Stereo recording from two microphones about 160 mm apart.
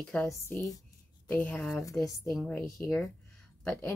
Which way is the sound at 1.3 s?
10° left (ahead or behind).